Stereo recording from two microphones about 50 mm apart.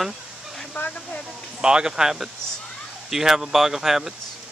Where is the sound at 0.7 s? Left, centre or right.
Left.